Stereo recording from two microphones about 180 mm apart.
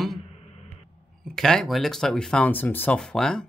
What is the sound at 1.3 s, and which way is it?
Speech, 5° left (ahead or behind).